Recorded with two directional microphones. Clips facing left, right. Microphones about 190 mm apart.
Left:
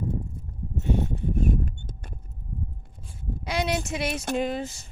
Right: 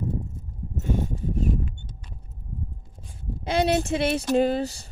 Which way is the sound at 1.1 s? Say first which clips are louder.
Left 1 dB; 55° left (ahead or behind).